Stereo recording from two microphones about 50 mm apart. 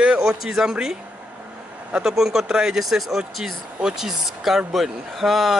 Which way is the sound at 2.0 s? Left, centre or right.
Centre.